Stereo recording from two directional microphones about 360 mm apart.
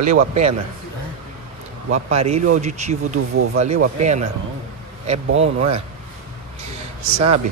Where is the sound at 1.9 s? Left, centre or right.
Centre.